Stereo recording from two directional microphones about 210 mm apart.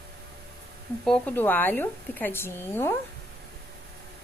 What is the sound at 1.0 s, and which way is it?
A woman's voice, 5° left (ahead or behind).